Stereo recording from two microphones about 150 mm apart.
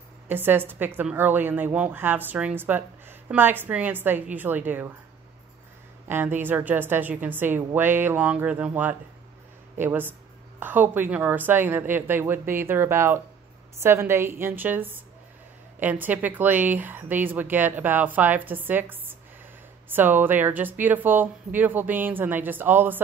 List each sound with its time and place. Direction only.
0.3 s a woman's voice: 15° right (ahead or behind)
6.0 s a woman's voice: 15° right (ahead or behind)